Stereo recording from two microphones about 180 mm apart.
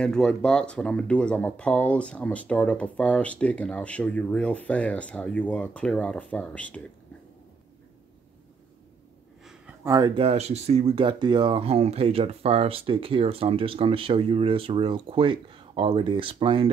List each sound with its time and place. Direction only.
0.0 s speech: 5° left (ahead or behind)
9.4 s a sound: 5° right (ahead or behind)
9.8 s speech: 20° right (ahead or behind)
10.2 s speech: 35° right (ahead or behind)